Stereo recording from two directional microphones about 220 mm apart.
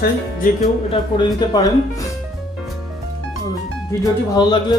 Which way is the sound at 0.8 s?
20° left (ahead or behind).